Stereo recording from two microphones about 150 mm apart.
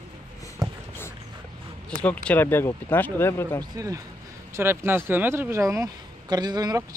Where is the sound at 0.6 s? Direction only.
25° right (ahead or behind).